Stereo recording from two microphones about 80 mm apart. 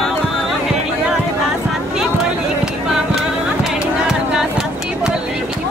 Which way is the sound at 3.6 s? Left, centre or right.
Centre.